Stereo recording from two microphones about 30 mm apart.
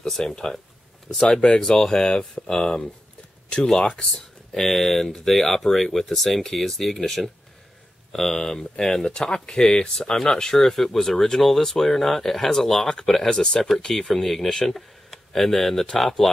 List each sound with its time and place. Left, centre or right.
0.3 s speech: centre
1.2 s speech: left
2.1 s speech: left
3.7 s speech: left
4.1 s speech: centre
13.3 s speech: left